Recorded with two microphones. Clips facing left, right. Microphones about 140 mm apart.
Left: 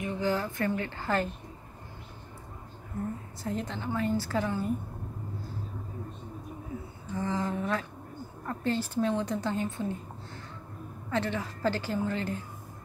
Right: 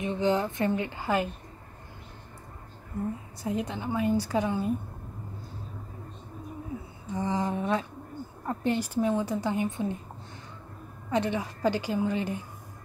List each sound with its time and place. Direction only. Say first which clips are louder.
0.0 s speech: right 4 dB; 20° right (ahead or behind)
3.4 s a woman's voice: right 3 dB; 15° right (ahead or behind)
7.2 s a woman's voice: right 2 dB; 20° right (ahead or behind)
11.1 s a woman's voice: right 3 dB; 15° right (ahead or behind)